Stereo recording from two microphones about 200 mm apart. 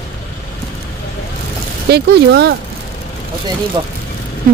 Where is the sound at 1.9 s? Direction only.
55° right (ahead or behind).